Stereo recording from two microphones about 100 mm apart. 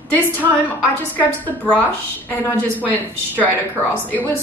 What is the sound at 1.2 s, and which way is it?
A woman's voice, 15° left (ahead or behind).